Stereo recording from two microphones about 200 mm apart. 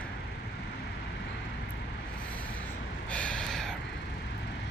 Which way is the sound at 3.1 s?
5° left (ahead or behind).